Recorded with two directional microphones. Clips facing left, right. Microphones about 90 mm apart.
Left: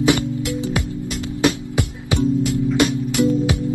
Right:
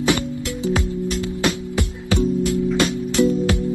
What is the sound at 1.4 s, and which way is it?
Music, 20° left (ahead or behind).